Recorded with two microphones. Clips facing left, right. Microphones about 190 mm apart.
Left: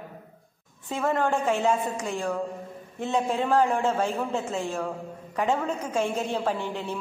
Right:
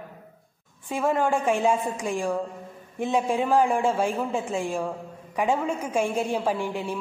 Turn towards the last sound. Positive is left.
turn(degrees=-10)  # may be behind; listen again after turning